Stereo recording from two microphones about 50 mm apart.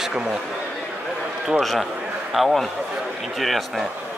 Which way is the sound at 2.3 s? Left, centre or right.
Centre.